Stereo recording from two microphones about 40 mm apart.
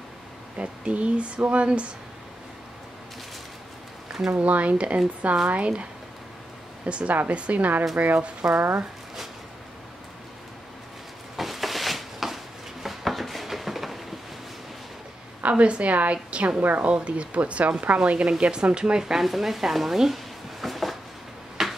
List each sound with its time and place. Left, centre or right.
0.6 s speech: right
4.4 s speech: right
6.9 s speech: right
8.5 s speech: right
11.3 s a sound: centre
15.4 s speech: right
19.2 s speech: centre
20.6 s a sound: centre